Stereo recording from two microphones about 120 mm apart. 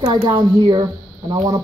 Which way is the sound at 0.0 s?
45° right (ahead or behind).